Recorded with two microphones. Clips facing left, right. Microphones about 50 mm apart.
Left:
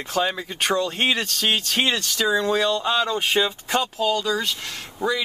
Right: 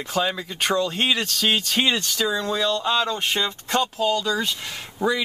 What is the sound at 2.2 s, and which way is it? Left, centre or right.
Speech, centre.